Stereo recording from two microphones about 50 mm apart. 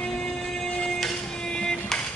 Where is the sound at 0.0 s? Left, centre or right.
Centre.